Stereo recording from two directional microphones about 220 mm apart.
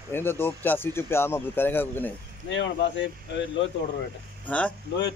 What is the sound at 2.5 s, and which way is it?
Speech, 55° left (ahead or behind).